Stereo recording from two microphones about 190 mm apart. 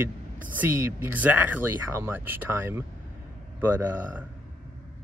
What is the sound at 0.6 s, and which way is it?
Speech, 10° right (ahead or behind).